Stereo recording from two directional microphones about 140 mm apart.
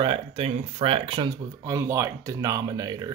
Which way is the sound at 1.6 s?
20° right (ahead or behind).